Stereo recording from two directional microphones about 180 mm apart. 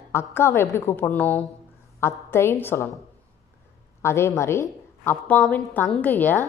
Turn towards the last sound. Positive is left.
turn(degrees=10)  # may be behind; listen again after turning